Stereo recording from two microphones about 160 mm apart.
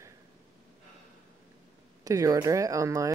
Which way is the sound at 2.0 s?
20° right (ahead or behind).